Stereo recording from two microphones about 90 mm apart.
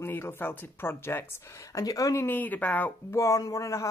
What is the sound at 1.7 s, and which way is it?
Speech, 40° left (ahead or behind).